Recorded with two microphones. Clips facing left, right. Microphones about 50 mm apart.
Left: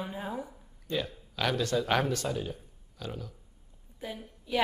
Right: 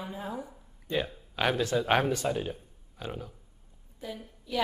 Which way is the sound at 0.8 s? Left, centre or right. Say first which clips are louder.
Right 2 dB; right.